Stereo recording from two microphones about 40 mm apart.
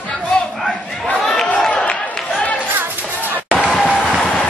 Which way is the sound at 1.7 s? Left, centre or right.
Left.